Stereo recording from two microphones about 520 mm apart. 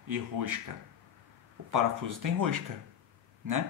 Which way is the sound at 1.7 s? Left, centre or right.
Right.